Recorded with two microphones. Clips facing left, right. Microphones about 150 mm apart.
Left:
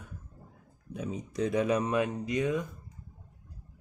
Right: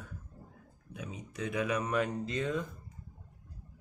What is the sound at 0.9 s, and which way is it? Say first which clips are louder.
Speech: left 7 dB; 35° left (ahead or behind).